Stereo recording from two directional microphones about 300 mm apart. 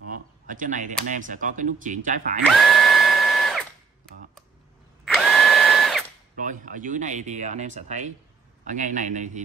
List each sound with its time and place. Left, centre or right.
0.1 s a sound: right
1.1 s speech: right
2.5 s drill: centre
6.3 s speech: right